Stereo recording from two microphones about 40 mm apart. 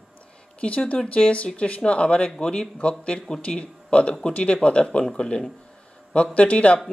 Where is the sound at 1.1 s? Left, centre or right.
Left.